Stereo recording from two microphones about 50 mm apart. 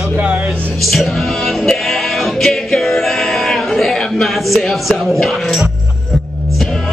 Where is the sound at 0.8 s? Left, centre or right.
Centre.